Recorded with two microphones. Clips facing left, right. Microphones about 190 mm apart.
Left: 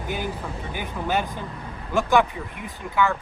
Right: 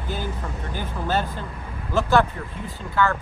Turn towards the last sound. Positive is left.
turn(degrees=15)  # may be behind; listen again after turning